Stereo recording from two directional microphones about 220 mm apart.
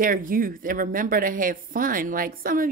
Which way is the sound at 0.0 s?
40° right (ahead or behind).